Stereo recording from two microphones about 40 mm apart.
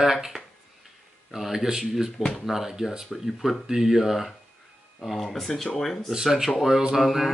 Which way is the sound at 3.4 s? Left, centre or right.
Centre.